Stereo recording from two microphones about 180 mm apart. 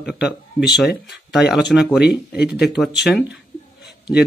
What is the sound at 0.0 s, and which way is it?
Speech, centre (ahead or behind).